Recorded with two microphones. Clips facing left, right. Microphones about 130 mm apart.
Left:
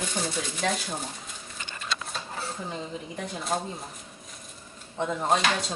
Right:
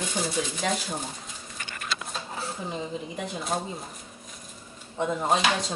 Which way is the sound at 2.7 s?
5° right (ahead or behind).